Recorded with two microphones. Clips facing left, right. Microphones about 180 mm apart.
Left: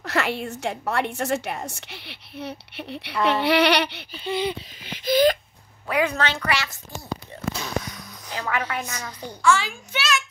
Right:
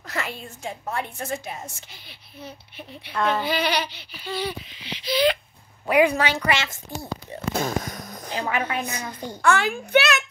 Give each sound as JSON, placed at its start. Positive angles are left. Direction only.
{"t": 0.0, "sound": "a woman's voice", "side_deg": 70}
{"t": 4.1, "sound": "speech", "side_deg": 20}
{"t": 4.7, "sound": "speech", "side_deg": 50}
{"t": 5.9, "sound": "a woman's voice", "side_deg": -15}
{"t": 7.5, "sound": "a sound", "side_deg": -50}
{"t": 8.3, "sound": "a woman's voice", "side_deg": -25}
{"t": 9.4, "sound": "a child's voice", "side_deg": -60}